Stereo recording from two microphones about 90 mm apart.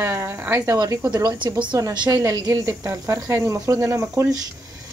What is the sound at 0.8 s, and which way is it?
A woman's voice, 45° right (ahead or behind).